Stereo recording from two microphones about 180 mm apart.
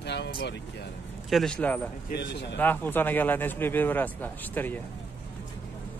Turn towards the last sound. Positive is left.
turn(degrees=10)  # may be behind; listen again after turning